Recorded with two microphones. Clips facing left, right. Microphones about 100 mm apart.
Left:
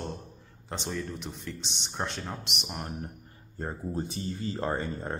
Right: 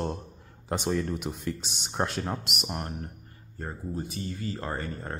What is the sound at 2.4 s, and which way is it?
Speech, 5° right (ahead or behind).